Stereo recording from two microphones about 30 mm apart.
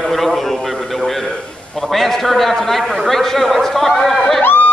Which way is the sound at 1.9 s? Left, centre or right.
Centre.